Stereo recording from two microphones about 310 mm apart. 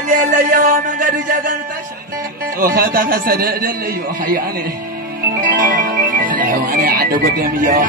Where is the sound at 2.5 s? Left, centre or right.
Right.